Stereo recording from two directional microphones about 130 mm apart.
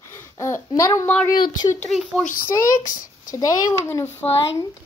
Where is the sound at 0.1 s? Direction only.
20° left (ahead or behind).